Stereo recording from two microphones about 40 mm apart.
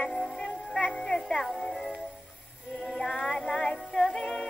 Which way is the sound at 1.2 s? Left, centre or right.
Centre.